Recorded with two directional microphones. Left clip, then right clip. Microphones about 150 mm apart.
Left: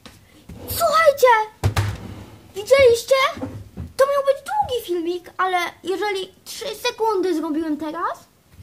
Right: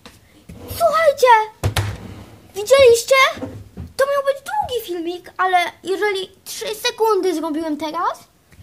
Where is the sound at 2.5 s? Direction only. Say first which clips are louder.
Right 3 dB; 35° right (ahead or behind); by 3.4 s 55° right (ahead or behind).